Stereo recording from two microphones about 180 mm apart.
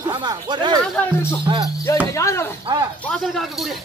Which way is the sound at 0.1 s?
25° right (ahead or behind).